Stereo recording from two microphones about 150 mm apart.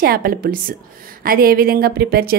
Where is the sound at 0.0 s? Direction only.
80° right.